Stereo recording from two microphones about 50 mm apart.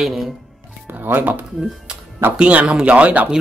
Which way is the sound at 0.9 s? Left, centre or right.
Right.